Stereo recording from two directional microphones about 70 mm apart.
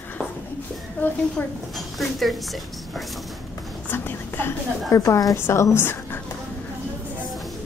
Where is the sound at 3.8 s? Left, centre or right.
Left.